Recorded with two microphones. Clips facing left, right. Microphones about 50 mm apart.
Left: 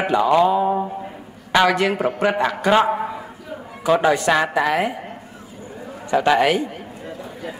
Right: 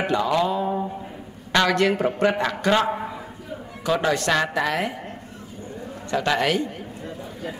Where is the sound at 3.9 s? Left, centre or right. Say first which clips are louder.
Left 5 dB; centre.